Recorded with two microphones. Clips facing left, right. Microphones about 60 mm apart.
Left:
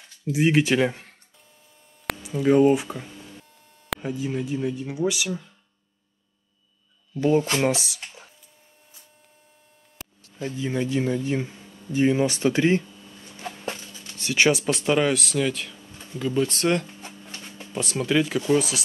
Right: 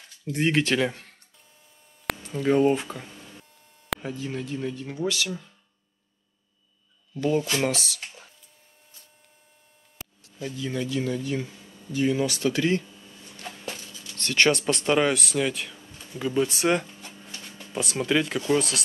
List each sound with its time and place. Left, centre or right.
0.3 s speech: centre
2.2 s speech: centre
7.2 s speech: left
7.7 s speech: centre
10.4 s speech: left
14.1 s speech: centre
17.0 s a sound: left
18.0 s speech: centre